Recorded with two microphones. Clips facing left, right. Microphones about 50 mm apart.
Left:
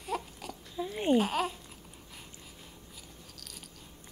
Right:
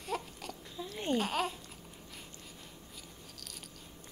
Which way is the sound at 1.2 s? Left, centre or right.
Centre.